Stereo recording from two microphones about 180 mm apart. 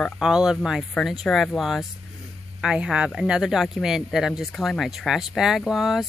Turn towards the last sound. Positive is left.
turn(degrees=0)  # may be behind; listen again after turning